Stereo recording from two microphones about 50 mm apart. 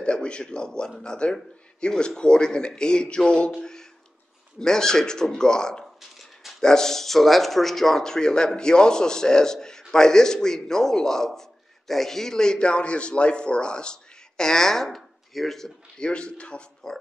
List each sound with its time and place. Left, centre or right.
0.0 s a man's voice: centre
16.0 s speech: centre